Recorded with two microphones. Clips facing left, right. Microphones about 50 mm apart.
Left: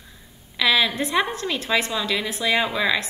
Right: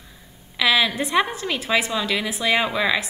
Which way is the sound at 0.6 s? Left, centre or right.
Centre.